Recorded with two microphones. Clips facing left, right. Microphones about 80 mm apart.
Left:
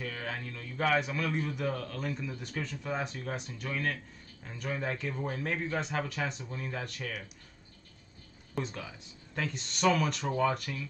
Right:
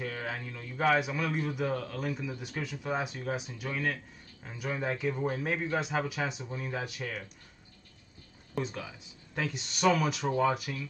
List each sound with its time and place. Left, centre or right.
0.0 s a man's voice: centre
8.5 s speech: centre